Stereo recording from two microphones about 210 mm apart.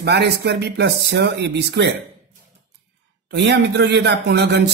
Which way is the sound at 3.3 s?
55° right (ahead or behind).